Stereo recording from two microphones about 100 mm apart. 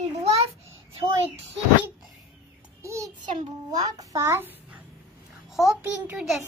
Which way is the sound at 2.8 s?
30° right (ahead or behind).